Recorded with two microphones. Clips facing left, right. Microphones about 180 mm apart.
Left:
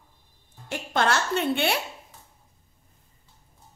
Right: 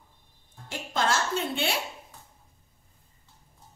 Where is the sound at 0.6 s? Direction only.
65° left (ahead or behind).